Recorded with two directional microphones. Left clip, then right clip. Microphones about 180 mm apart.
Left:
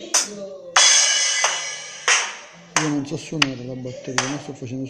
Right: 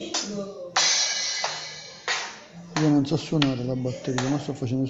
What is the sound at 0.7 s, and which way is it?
Music, 40° left (ahead or behind).